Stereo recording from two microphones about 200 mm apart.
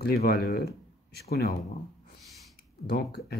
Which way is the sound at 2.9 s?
55° left (ahead or behind).